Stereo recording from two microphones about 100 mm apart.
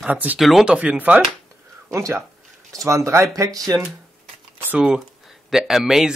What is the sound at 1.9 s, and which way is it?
Speech, 30° right (ahead or behind).